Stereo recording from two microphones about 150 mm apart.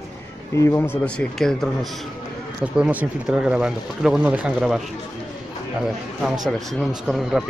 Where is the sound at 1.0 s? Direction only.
5° left (ahead or behind).